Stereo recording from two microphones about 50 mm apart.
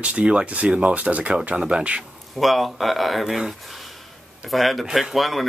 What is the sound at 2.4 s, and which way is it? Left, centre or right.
Speech, centre.